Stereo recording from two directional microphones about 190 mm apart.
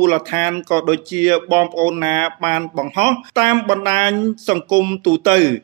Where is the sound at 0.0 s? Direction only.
25° right (ahead or behind).